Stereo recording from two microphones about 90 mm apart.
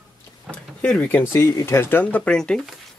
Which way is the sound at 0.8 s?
15° left (ahead or behind).